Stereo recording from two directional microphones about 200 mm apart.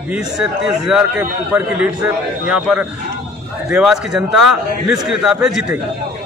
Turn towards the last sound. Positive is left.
turn(degrees=0)  # may be behind; listen again after turning